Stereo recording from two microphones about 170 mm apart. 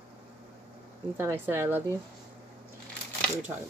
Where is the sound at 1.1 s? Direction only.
15° right (ahead or behind).